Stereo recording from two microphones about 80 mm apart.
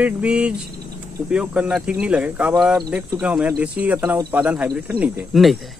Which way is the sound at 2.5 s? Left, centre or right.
Centre.